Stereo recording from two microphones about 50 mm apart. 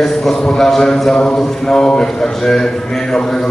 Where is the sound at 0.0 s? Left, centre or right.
Centre.